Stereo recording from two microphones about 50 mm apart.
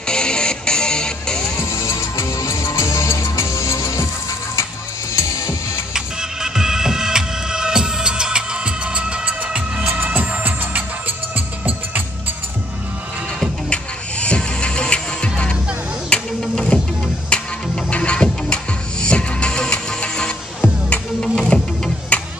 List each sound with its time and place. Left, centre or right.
0.0 s music: centre
1.6 s music: left
2.8 s music: left
5.1 s music: left
5.9 s music: centre
9.9 s music: right
14.2 s music: left
16.1 s a sound: centre
17.3 s music: left